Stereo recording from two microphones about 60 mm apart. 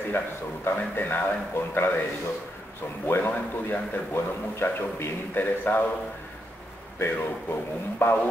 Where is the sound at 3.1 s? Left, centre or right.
Left.